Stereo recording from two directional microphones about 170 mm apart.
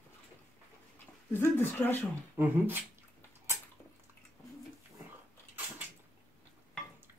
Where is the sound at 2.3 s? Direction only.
10° right (ahead or behind).